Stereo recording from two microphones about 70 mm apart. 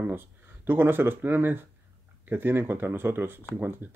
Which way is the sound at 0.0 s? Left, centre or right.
Right.